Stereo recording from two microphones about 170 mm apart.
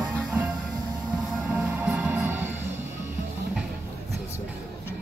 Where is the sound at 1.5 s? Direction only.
10° right (ahead or behind).